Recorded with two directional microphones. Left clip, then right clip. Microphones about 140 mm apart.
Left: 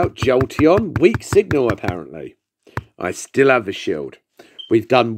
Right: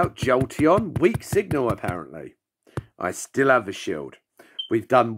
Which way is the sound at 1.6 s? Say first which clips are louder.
Left 5 dB; 30° left (ahead or behind).